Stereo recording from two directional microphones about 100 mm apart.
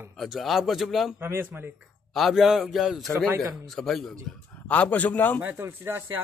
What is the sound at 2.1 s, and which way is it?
A man's voice, centre (ahead or behind).